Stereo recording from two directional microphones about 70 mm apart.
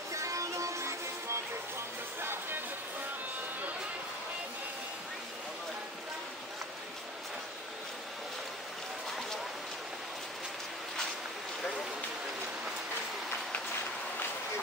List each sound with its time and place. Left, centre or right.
0.1 s music: right